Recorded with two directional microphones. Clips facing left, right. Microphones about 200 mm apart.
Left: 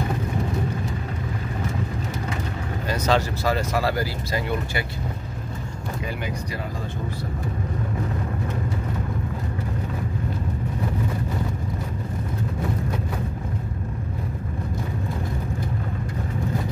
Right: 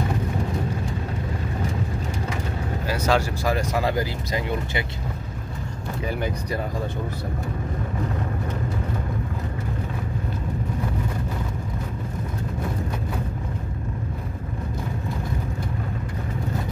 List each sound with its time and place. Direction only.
2.9 s speech: 10° right (ahead or behind)